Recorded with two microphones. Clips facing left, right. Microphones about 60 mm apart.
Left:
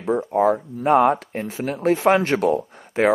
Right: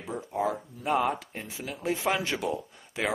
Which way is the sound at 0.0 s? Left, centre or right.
Left.